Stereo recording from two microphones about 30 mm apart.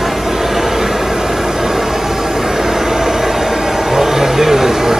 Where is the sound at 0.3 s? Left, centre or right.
Centre.